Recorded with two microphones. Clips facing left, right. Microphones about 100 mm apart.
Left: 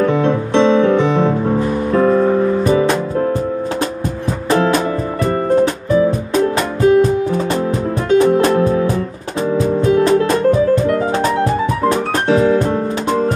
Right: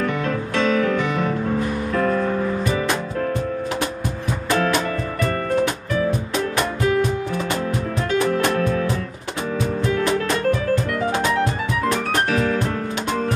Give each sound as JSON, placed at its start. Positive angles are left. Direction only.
{"t": 0.0, "sound": "music", "side_deg": 25}
{"t": 4.5, "sound": "music", "side_deg": 30}
{"t": 8.1, "sound": "music", "side_deg": 25}